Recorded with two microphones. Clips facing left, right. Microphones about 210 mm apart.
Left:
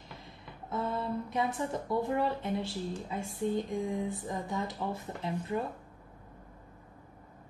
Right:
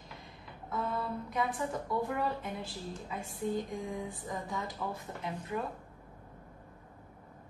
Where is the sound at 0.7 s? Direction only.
25° left (ahead or behind).